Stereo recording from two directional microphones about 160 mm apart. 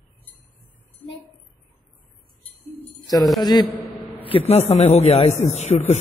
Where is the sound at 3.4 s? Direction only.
25° left (ahead or behind).